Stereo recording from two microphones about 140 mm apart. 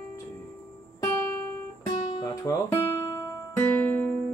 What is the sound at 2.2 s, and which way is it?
Guitar, 25° left (ahead or behind).